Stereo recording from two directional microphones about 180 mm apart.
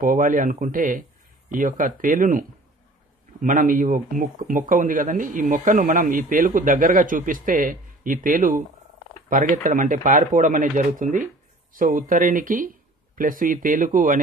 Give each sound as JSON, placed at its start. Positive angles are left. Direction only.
{"t": 0.0, "sound": "a man's voice", "side_deg": -50}